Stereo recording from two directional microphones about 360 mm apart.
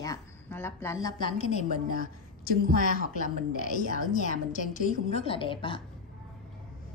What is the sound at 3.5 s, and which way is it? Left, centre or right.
A woman's voice, left.